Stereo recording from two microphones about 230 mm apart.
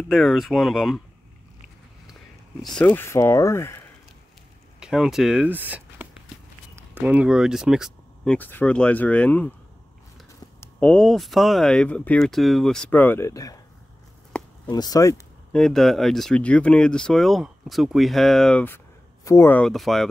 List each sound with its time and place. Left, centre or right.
0.1 s speech: centre
2.6 s speech: centre
4.7 s walk: centre
8.4 s speech: centre
10.6 s speech: centre
14.3 s chop: centre
14.7 s speech: centre
15.5 s speech: centre